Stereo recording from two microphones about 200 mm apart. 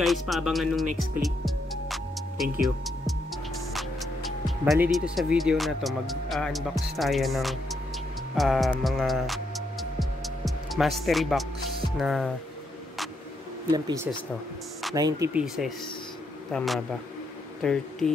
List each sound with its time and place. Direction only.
0.0 s speech: centre (ahead or behind)
1.2 s music: centre (ahead or behind)
3.7 s speech: centre (ahead or behind)
8.4 s music: centre (ahead or behind)
12.0 s speech: centre (ahead or behind)
13.7 s speech: 20° right (ahead or behind)
15.3 s speech: centre (ahead or behind)